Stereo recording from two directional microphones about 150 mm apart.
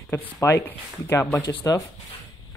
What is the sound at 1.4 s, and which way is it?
Speech, 25° left (ahead or behind).